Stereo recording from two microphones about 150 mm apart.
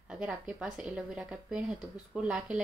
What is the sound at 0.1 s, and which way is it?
Speech, 5° right (ahead or behind).